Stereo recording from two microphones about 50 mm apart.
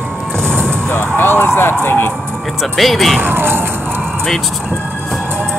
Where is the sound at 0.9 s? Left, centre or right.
Left.